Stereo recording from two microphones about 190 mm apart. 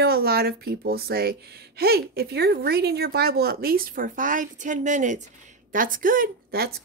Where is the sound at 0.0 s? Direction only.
55° right (ahead or behind).